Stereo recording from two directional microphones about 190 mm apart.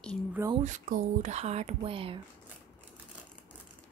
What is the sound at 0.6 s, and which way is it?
Speech, 45° right (ahead or behind).